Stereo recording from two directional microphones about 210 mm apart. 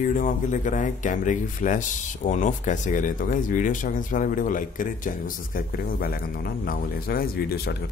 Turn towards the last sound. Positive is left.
turn(degrees=45)  # may be behind; listen again after turning